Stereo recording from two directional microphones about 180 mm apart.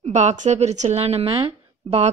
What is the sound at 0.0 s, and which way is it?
A woman's voice, 40° right (ahead or behind).